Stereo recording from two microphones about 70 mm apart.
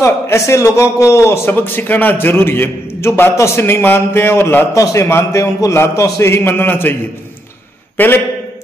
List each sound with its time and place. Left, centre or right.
0.0 s a man's voice: left
1.5 s a man's voice: left
4.7 s a man's voice: left
6.2 s a man's voice: left
8.0 s a man's voice: left